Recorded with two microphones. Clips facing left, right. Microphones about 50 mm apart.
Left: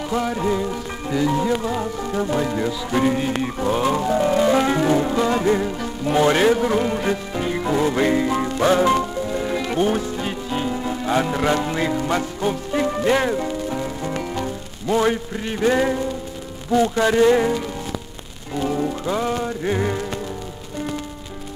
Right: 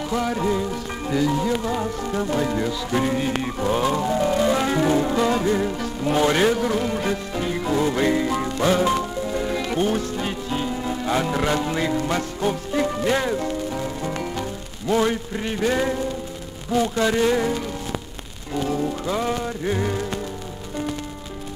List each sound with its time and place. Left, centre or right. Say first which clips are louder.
0.1 s music: left 1 dB; centre
1.2 s speech: left 3 dB; centre
4.1 s music: left 5 dB; centre
5.6 s music: even; centre
6.2 s music: left 3 dB; centre
8.5 s music: left 3 dB; centre
9.2 s music: left 1 dB; centre
13.0 s speech: left 5 dB; left
13.3 s music: left 1 dB; centre
15.3 s speech: even; centre
15.6 s music: left 4 dB; centre
16.8 s music: left 2 dB; left
18.7 s music: left 2 dB; centre